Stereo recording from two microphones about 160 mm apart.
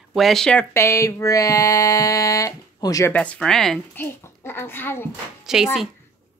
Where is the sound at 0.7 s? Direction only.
15° left (ahead or behind).